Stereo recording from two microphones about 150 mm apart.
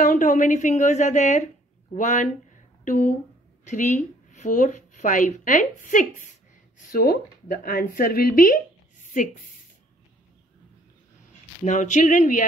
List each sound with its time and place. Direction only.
0.0 s a woman's voice: 55° left (ahead or behind)
11.6 s speech: 55° left (ahead or behind)